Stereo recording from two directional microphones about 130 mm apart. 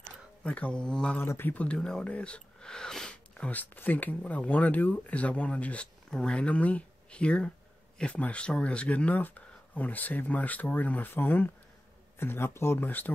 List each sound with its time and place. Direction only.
0.4 s speech: 10° left (ahead or behind)
1.2 s speech: 15° left (ahead or behind)